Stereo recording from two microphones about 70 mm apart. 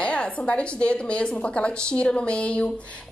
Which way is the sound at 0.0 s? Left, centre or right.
Centre.